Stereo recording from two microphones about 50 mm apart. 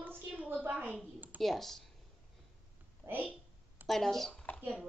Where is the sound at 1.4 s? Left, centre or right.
Centre.